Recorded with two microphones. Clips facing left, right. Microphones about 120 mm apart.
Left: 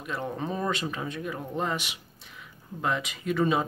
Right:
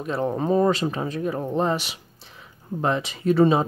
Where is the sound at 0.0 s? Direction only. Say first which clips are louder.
Right 8 dB; 35° right (ahead or behind).